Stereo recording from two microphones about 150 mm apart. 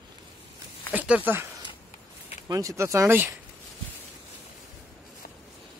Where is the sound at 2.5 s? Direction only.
20° right (ahead or behind).